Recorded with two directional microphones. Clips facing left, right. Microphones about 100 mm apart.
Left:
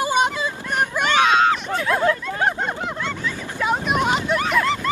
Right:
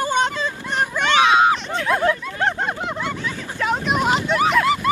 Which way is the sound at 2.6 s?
10° right (ahead or behind).